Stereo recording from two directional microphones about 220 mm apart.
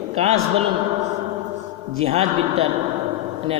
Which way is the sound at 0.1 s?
30° right (ahead or behind).